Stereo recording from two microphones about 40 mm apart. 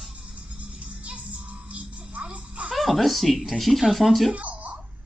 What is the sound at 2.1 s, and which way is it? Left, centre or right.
Music, right.